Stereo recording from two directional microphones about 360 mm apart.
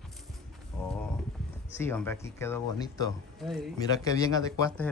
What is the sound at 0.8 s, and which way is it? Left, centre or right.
Speech, centre.